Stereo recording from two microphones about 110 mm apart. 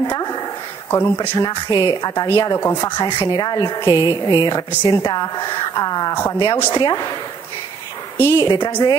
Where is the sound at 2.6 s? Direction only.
20° left (ahead or behind).